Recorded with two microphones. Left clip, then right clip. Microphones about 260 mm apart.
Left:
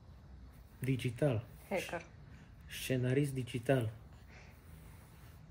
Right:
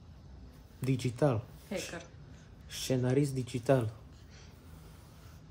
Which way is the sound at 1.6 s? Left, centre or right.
Left.